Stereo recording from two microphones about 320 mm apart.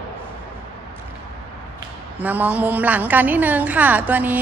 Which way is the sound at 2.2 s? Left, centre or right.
Centre.